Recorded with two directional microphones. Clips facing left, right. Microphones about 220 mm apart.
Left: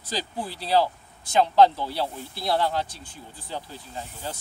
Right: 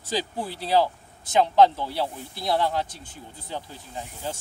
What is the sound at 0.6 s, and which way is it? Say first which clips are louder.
Speech: even; 20° right (ahead or behind).